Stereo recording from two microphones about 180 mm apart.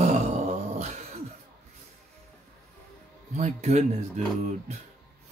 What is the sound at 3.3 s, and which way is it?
Speech, 40° right (ahead or behind).